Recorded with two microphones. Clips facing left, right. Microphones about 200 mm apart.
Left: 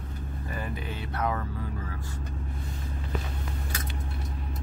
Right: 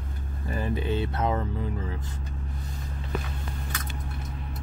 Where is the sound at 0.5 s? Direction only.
30° right (ahead or behind).